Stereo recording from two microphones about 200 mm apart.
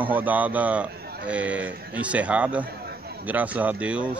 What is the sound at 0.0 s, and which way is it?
A man's voice, 10° right (ahead or behind).